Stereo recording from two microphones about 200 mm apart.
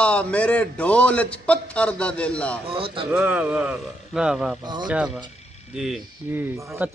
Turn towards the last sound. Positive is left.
turn(degrees=-10)  # may be behind; listen again after turning